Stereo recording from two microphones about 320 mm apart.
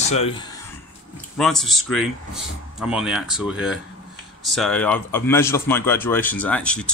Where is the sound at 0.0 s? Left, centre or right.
Centre.